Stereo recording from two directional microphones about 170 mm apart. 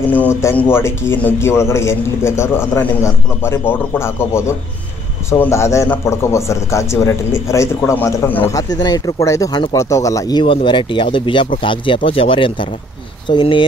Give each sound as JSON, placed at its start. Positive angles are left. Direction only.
{"t": 0.1, "sound": "a man's voice", "side_deg": 10}